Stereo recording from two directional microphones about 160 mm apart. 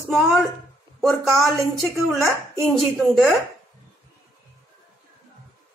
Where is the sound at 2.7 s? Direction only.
Centre (ahead or behind).